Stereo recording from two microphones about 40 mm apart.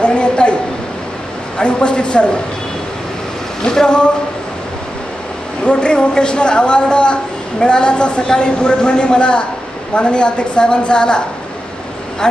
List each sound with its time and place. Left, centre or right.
0.0 s a sound: left
1.6 s speech: left
3.6 s speech: centre
5.6 s speech: left